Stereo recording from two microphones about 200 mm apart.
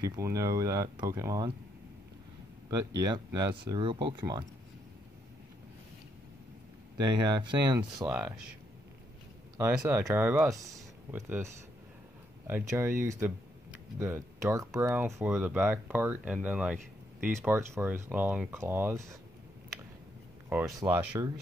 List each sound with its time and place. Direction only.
0.0 s speech: 15° right (ahead or behind)
2.7 s speech: 20° right (ahead or behind)
7.1 s speech: 20° right (ahead or behind)
8.1 s speech: 5° right (ahead or behind)
9.6 s speech: 15° right (ahead or behind)
11.1 s speech: 10° right (ahead or behind)
20.4 s speech: 10° right (ahead or behind)